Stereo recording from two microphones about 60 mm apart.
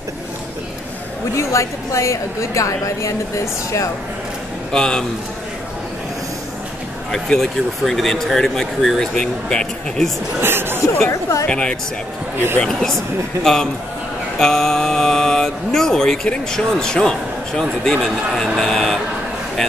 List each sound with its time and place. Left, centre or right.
1.3 s a woman's voice: left
4.7 s speech: centre
7.1 s speech: centre
10.4 s speech: right
11.1 s a woman's voice: left
11.4 s speech: centre
13.4 s speech: centre